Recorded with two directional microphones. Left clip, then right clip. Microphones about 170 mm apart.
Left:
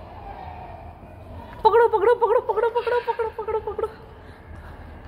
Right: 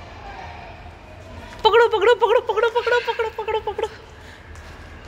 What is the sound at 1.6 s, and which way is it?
Speech, 5° left (ahead or behind).